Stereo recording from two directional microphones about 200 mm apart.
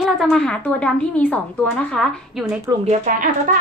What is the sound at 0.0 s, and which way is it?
A woman's voice, centre (ahead or behind).